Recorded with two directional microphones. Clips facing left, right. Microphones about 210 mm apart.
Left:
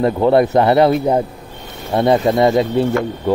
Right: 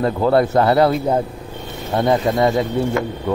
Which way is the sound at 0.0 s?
20° left (ahead or behind).